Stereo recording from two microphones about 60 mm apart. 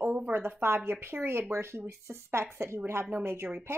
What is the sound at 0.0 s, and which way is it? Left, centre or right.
A woman's voice, right.